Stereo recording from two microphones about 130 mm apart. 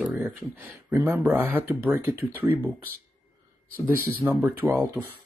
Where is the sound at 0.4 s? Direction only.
15° right (ahead or behind).